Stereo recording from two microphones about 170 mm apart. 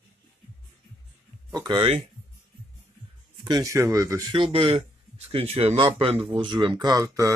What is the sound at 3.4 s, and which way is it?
Speech, 25° right (ahead or behind).